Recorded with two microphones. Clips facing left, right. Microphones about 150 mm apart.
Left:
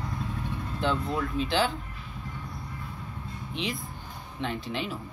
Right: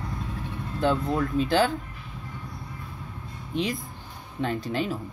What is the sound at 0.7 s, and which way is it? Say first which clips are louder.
Speech: right 5 dB; 40° right (ahead or behind).